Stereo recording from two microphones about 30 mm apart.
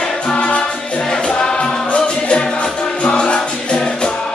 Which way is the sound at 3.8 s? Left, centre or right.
Centre.